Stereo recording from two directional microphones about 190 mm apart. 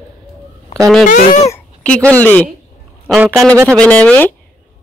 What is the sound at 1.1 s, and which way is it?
Speech, 40° left (ahead or behind).